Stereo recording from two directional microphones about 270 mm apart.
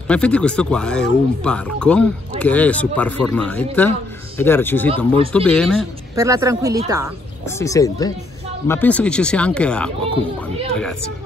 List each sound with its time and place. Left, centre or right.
0.1 s speech: centre
4.9 s speech: right
5.3 s speech: centre
6.1 s speech: centre
7.4 s speech: centre
10.4 s a sound: centre